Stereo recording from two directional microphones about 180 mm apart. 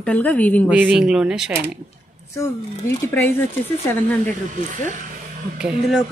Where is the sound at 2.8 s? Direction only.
10° left (ahead or behind).